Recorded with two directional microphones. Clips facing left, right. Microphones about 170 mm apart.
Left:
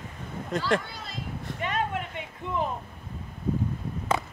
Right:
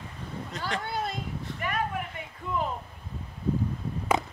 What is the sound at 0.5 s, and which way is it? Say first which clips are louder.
Speech: left 10 dB; 50° left (ahead or behind).